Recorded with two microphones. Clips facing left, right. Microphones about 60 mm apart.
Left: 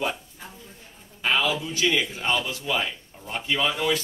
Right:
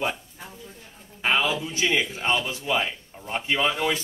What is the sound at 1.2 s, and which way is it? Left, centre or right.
A man's voice, centre.